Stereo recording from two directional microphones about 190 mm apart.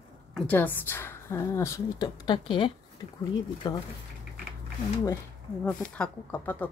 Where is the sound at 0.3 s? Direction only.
5° left (ahead or behind); by 3.8 s 25° left (ahead or behind).